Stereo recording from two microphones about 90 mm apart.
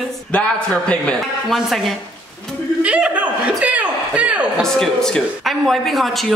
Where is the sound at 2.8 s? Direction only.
15° right (ahead or behind).